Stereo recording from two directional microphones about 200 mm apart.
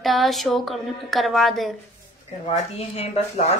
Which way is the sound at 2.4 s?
30° left (ahead or behind).